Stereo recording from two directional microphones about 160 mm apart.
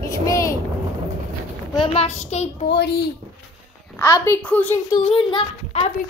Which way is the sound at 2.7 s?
90° left.